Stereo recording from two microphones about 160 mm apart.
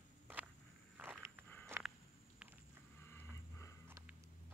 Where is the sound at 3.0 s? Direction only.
15° left (ahead or behind).